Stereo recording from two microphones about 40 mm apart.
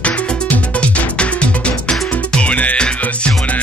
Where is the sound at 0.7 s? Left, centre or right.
Left.